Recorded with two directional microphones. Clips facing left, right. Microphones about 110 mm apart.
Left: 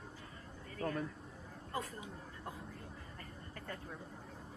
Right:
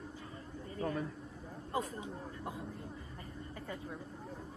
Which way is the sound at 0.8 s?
20° right (ahead or behind).